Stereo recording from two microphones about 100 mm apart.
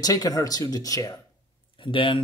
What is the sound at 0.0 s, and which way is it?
Speech, 40° left (ahead or behind).